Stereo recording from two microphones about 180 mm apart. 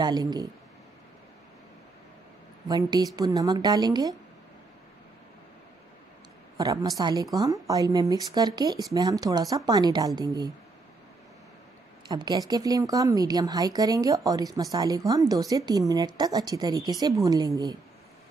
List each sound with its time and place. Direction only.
0.0 s a woman's voice: 20° right (ahead or behind)
2.7 s a woman's voice: 20° right (ahead or behind)
6.5 s a woman's voice: 20° right (ahead or behind)
12.1 s a woman's voice: 20° right (ahead or behind)